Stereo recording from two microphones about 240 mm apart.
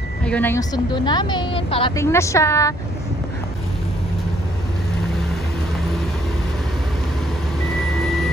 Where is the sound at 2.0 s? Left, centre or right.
Centre.